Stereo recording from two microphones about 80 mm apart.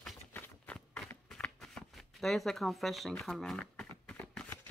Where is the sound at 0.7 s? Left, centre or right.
Centre.